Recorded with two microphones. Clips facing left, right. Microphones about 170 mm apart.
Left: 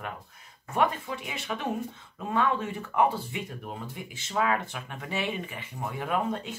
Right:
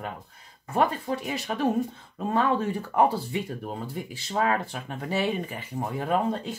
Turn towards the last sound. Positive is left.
turn(degrees=-35)  # may be behind; listen again after turning